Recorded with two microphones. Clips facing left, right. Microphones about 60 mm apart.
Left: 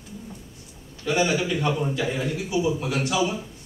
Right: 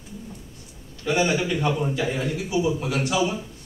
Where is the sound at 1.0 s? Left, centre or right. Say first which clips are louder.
Right 1 dB; centre.